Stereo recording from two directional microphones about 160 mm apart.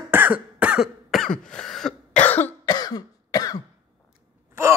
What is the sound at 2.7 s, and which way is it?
Cough, 25° left (ahead or behind).